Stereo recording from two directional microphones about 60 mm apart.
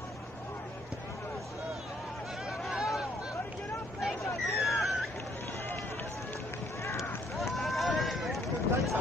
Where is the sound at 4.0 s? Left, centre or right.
Centre.